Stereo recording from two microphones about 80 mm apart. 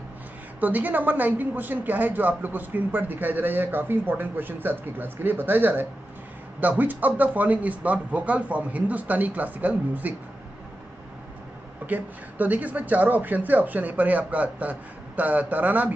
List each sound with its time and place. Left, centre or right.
0.6 s a woman's voice: right
11.8 s a woman's voice: right